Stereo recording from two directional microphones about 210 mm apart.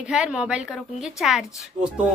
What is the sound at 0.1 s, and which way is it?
Speech, 5° right (ahead or behind).